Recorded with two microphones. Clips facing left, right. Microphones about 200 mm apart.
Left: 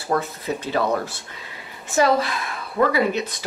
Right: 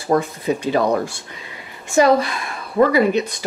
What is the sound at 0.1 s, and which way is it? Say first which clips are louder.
Speech: right 5 dB; 15° right (ahead or behind).